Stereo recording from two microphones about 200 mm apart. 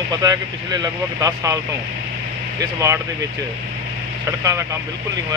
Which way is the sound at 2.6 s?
15° right (ahead or behind).